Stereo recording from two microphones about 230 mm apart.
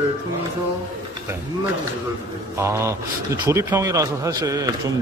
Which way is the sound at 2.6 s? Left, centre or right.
Centre.